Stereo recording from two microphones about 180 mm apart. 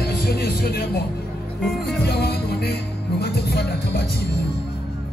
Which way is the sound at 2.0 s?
65° left (ahead or behind).